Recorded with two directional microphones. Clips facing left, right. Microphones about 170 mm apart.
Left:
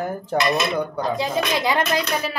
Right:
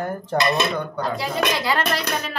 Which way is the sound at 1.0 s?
20° left (ahead or behind).